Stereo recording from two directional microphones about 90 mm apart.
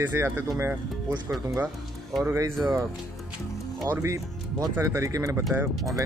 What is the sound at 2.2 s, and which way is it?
Speech, 30° right (ahead or behind).